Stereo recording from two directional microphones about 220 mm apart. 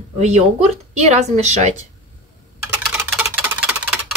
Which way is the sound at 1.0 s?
30° right (ahead or behind).